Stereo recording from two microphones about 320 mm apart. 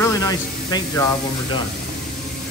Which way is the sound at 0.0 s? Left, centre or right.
Centre.